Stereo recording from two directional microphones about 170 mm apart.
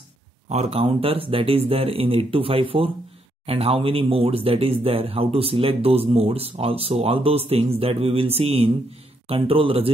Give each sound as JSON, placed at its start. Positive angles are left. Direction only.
{"t": 0.5, "sound": "speech", "side_deg": -40}